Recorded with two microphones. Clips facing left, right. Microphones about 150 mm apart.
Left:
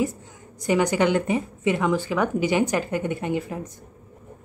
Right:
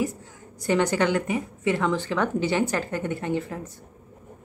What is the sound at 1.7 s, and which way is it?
Speech, 10° left (ahead or behind).